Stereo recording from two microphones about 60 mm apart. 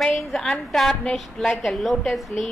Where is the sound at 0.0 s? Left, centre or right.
Centre.